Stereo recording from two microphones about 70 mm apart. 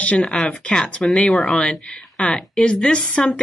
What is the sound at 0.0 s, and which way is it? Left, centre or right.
Speech, centre.